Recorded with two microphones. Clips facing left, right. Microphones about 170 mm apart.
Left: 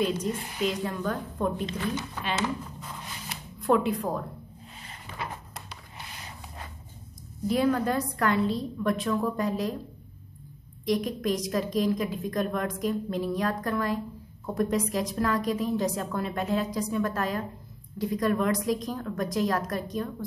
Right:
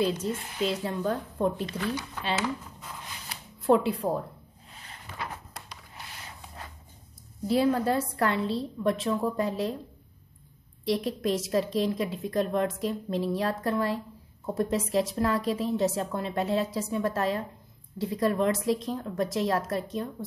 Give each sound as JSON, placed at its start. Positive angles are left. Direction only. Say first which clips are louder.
{"t": 0.0, "sound": "a woman's voice", "louder": "even", "side_deg": -30}
{"t": 3.6, "sound": "a woman's voice", "louder": "right 1 dB", "side_deg": -30}
{"t": 5.2, "sound": "a sound", "louder": "left 1 dB", "side_deg": 20}
{"t": 7.4, "sound": "a woman's voice", "louder": "right 1 dB", "side_deg": -30}
{"t": 10.9, "sound": "a woman's voice", "louder": "even", "side_deg": -30}